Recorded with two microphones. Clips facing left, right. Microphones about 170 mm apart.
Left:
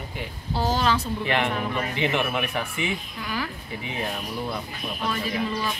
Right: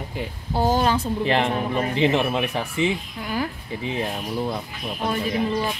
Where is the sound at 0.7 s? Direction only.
50° right (ahead or behind).